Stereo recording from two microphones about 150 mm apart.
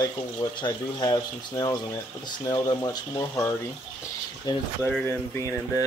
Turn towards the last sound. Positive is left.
turn(degrees=20)  # may be behind; listen again after turning